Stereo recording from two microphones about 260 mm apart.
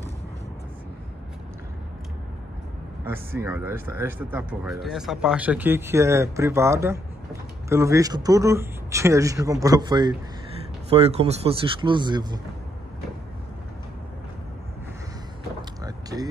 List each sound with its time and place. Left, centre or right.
3.3 s speech: centre
15.8 s door: centre